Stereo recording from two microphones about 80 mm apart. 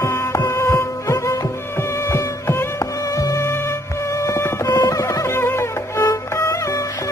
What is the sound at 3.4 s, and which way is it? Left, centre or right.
Music, left.